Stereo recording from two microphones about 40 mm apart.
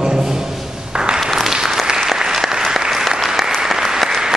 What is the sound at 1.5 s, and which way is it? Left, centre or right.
Applause, centre.